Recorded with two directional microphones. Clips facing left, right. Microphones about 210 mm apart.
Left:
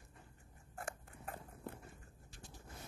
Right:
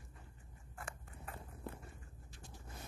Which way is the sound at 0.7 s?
45° left (ahead or behind).